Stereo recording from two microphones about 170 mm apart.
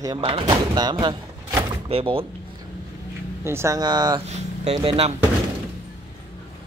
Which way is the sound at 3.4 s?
15° right (ahead or behind).